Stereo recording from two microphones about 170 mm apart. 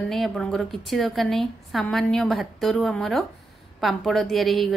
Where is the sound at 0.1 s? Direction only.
Centre (ahead or behind).